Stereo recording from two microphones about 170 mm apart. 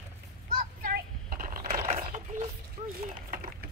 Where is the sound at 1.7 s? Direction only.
40° right (ahead or behind).